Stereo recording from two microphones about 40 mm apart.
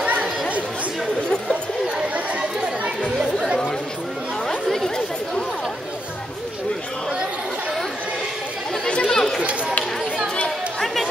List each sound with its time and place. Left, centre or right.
1.5 s chatter: right
4.7 s chatter: centre
9.0 s chatter: centre